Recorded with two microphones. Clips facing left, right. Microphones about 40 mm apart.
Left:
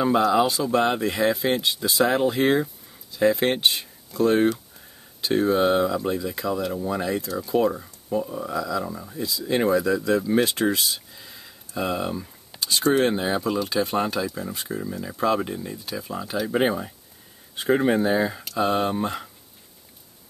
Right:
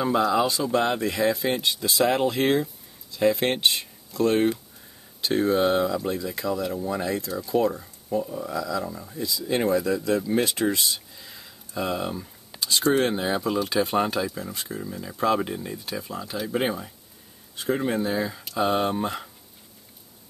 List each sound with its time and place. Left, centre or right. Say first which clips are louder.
0.0 s speech: left 2 dB; centre
1.9 s speech: left 1 dB; centre
14.3 s speech: left 3 dB; centre
16.1 s speech: left 4 dB; centre
17.6 s speech: left 5 dB; left
18.6 s speech: left 1 dB; centre